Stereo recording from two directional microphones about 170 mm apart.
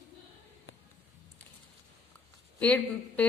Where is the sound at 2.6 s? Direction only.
10° left (ahead or behind).